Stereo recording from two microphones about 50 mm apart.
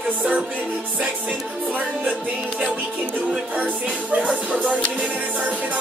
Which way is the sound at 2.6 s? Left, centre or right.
Right.